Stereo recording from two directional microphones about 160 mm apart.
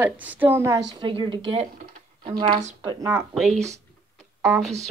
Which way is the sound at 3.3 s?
Centre (ahead or behind).